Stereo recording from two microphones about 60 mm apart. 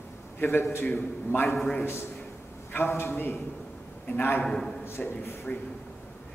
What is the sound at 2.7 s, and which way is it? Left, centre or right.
A man's voice, left.